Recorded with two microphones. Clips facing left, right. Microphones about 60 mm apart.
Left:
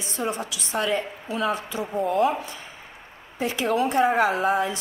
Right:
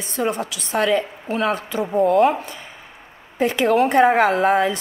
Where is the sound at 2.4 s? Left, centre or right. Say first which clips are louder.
Right 2 dB; right.